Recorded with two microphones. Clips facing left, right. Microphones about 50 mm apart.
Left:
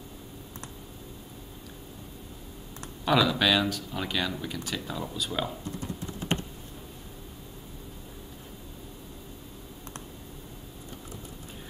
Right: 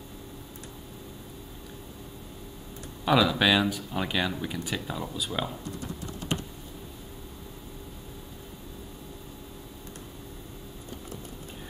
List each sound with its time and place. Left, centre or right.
3.1 s speech: centre
6.3 s computer keyboard: left